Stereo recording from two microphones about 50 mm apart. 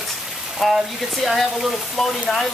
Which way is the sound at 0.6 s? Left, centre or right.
Centre.